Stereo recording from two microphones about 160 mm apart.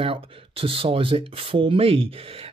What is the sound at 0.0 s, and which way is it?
Speech, 35° right (ahead or behind).